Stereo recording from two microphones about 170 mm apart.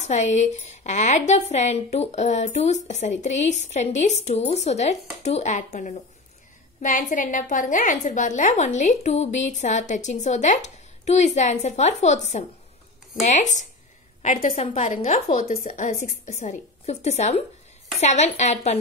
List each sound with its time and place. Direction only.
0.0 s a woman's voice: 45° left (ahead or behind)